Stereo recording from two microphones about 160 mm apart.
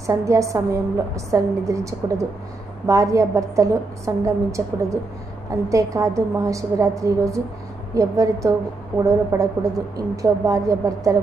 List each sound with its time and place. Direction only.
0.0 s speech: 20° right (ahead or behind)